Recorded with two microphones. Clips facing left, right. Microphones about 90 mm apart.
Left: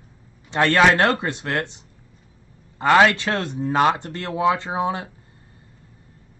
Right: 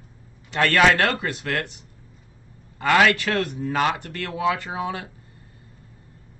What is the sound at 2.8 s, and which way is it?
Speech, 25° left (ahead or behind).